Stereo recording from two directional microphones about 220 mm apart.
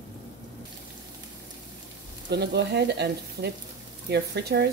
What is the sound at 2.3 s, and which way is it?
Speech, 50° right (ahead or behind).